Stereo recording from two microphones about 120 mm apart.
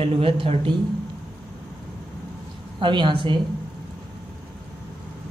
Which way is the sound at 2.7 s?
40° right (ahead or behind).